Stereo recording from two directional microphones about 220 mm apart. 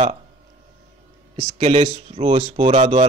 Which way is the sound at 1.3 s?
25° right (ahead or behind).